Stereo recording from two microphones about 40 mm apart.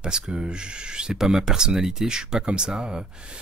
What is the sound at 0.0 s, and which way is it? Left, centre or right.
Speech, right.